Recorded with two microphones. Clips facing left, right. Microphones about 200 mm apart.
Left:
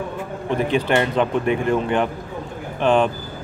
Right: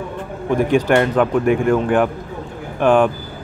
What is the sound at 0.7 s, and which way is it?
Speech, 10° right (ahead or behind).